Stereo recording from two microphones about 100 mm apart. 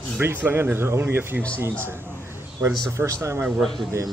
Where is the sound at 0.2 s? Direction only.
20° right (ahead or behind).